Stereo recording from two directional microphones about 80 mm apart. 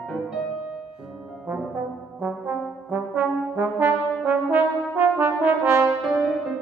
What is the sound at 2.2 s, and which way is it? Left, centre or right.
Brass instrument, right.